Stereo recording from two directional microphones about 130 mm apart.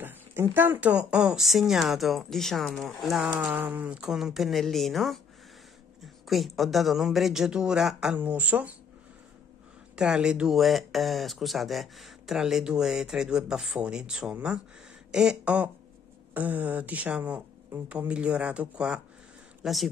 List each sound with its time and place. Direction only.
0.0 s speech: 15° right (ahead or behind); by 3.3 s centre (ahead or behind)
3.3 s speech: 10° right (ahead or behind)
9.9 s speech: 5° right (ahead or behind)